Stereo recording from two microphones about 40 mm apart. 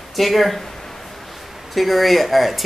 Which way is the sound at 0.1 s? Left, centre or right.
Centre.